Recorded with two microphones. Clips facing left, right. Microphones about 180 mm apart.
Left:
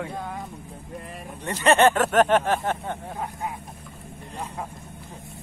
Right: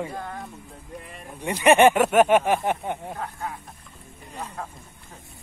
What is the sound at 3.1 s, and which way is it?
Speech, 15° left (ahead or behind).